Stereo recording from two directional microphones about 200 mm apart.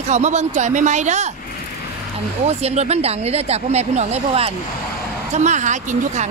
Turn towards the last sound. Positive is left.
turn(degrees=-40)  # may be behind; listen again after turning